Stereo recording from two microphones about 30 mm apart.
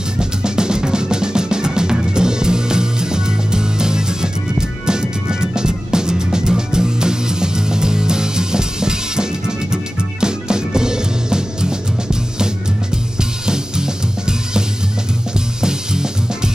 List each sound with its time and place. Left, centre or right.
0.2 s music: right